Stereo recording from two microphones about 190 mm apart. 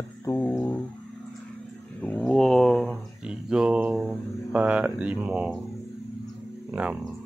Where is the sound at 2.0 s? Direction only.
5° left (ahead or behind).